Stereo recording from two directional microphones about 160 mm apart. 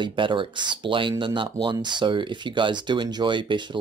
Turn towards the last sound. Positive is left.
turn(degrees=-30)  # may be behind; listen again after turning